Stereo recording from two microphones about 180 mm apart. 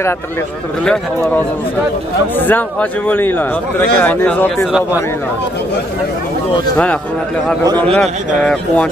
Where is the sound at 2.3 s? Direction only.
10° left (ahead or behind).